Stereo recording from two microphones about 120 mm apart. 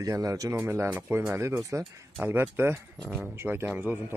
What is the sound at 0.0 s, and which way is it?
Speech, 30° right (ahead or behind).